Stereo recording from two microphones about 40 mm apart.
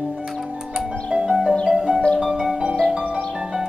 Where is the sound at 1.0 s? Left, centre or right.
Centre.